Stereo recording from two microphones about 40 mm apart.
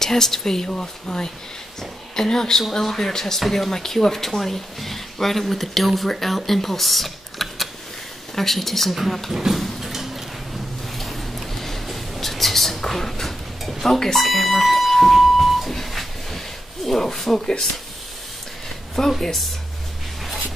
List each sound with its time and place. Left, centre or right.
0.0 s a woman's voice: centre
9.3 s speech: centre
9.6 s a sound: centre
18.9 s speech: centre